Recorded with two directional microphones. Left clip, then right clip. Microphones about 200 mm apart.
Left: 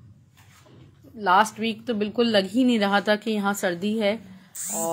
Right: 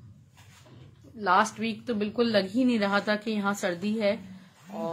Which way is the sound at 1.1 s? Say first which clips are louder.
Left 4 dB; 20° left (ahead or behind).